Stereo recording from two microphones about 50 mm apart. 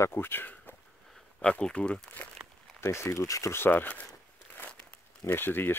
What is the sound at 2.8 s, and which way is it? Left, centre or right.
Speech, left.